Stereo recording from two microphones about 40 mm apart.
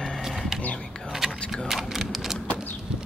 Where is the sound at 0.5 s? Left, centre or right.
Centre.